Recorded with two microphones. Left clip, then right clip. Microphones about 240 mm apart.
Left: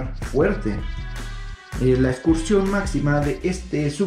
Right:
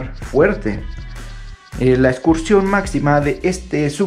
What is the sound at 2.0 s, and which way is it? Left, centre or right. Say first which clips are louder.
Speech: right 6 dB; centre.